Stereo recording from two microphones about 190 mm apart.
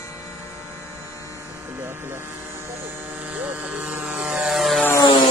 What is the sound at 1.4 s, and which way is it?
Electric shaver, 10° right (ahead or behind).